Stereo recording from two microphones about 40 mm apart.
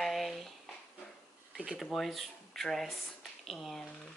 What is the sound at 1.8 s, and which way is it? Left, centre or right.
Speech, centre.